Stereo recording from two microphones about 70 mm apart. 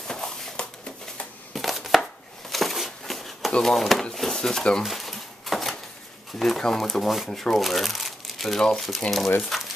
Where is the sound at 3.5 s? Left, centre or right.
Centre.